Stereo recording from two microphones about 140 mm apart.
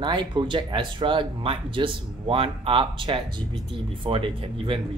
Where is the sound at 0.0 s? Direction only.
35° right (ahead or behind).